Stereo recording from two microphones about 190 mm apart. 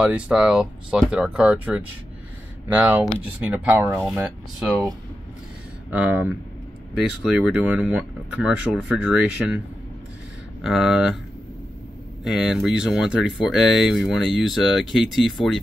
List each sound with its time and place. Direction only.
0.0 s speech: 5° right (ahead or behind)
4.6 s speech: centre (ahead or behind)
5.9 s speech: 10° right (ahead or behind)
10.6 s speech: centre (ahead or behind)
12.3 s speech: 5° right (ahead or behind)